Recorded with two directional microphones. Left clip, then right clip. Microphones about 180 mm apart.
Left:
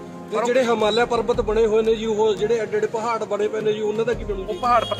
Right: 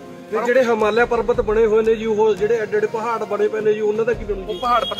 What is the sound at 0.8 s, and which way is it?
Speech, 35° right (ahead or behind).